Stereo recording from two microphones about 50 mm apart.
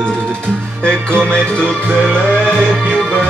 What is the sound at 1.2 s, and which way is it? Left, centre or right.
Music, left.